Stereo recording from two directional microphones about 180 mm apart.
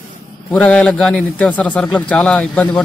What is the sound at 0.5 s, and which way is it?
A man's voice, 5° left (ahead or behind).